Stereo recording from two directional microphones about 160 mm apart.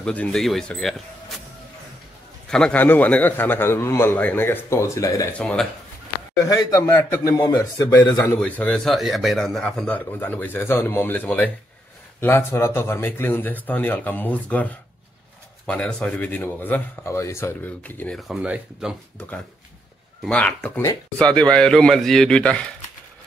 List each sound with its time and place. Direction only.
0.0 s speech: 5° left (ahead or behind)
2.5 s a man's voice: 5° left (ahead or behind)
5.4 s speech: 5° left (ahead or behind)
6.4 s a man's voice: 25° left (ahead or behind); by 18.9 s 5° right (ahead or behind)
20.2 s a man's voice: 5° left (ahead or behind)